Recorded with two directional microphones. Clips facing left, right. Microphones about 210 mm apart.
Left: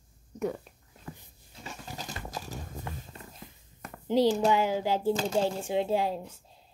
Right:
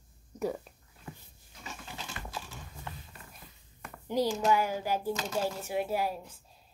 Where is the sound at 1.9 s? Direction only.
40° left (ahead or behind).